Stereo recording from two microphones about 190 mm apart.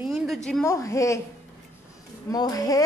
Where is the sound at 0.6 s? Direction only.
15° left (ahead or behind).